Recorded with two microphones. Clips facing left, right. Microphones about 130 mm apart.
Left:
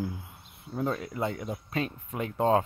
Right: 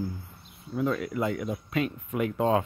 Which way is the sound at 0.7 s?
35° left (ahead or behind).